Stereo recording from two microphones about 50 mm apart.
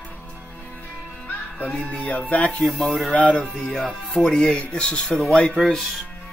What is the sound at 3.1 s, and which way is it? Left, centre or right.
Speech, left.